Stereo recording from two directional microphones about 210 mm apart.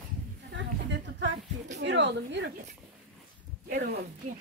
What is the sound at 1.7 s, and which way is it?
Speech, 60° right (ahead or behind).